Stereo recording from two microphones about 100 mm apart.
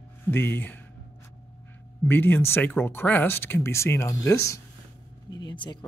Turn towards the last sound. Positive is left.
turn(degrees=50)  # may be behind; listen again after turning